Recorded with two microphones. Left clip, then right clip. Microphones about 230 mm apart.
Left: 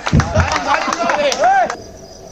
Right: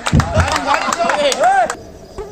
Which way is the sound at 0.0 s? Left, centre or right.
Right.